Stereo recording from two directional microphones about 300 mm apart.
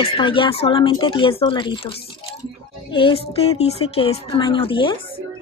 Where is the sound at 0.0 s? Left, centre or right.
Centre.